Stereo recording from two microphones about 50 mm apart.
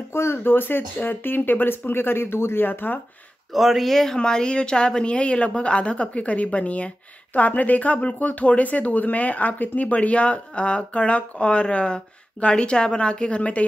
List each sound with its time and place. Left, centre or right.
0.1 s speech: left
3.5 s speech: centre; by 13.7 s left